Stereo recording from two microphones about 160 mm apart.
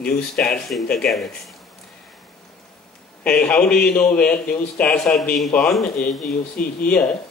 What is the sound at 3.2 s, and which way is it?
A man's voice, 10° left (ahead or behind).